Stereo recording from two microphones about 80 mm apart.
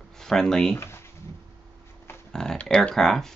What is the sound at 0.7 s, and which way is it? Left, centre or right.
Speech, left.